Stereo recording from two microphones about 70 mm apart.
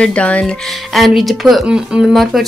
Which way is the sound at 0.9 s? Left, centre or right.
Centre.